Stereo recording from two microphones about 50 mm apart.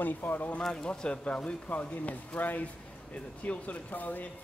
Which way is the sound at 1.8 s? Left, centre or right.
Left.